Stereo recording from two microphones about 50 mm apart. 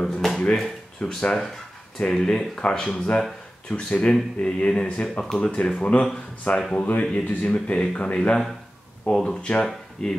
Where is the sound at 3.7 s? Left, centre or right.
Left.